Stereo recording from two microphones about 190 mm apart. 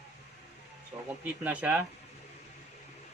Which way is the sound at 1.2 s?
10° right (ahead or behind).